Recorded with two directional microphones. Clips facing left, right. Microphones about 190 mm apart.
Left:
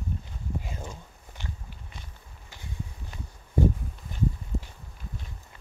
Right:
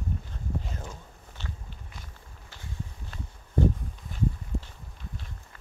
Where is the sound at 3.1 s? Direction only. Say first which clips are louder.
Right 1 dB; 15° left (ahead or behind).